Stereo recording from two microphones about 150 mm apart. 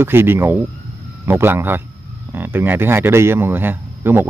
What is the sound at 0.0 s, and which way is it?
Speech, 15° right (ahead or behind).